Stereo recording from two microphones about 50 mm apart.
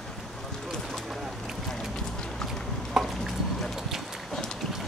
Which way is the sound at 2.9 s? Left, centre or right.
Centre.